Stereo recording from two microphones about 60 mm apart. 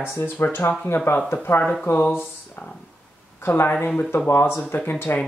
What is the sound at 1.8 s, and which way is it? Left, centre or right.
Speech, left.